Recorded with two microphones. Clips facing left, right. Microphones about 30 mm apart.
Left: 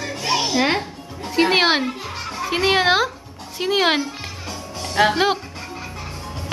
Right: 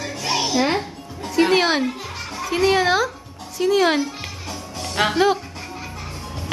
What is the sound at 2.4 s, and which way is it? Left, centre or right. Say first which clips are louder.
A woman's voice: even; left.